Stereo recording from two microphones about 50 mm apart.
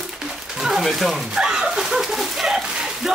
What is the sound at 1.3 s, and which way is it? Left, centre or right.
Speech, centre.